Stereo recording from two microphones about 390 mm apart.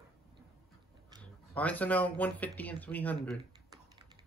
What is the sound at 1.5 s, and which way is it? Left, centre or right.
Speech, centre.